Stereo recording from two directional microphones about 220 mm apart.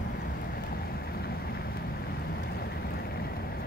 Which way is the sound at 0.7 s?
45° left (ahead or behind).